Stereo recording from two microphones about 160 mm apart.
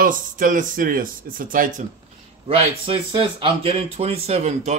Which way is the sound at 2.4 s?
35° right (ahead or behind).